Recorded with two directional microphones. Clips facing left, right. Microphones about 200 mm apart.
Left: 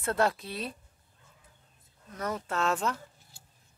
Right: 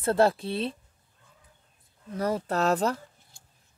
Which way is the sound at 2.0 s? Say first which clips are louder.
Right 6 dB; 30° right (ahead or behind).